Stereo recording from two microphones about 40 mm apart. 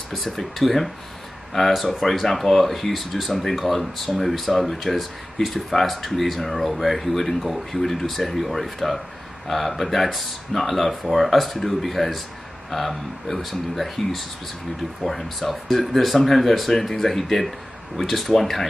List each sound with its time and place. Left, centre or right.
0.1 s speech: centre